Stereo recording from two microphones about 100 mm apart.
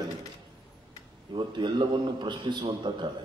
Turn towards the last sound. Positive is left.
turn(degrees=-50)  # may be behind; listen again after turning